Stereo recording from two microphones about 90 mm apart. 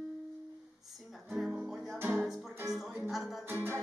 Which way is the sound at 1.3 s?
5° right (ahead or behind).